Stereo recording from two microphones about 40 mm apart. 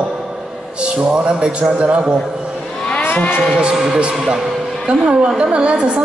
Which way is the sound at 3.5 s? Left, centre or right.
Right.